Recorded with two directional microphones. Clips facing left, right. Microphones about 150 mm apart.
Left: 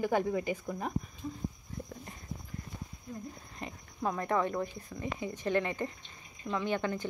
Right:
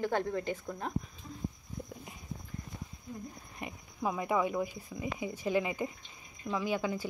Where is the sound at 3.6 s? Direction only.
10° right (ahead or behind).